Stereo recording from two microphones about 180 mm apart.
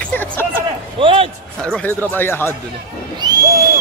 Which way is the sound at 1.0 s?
30° right (ahead or behind).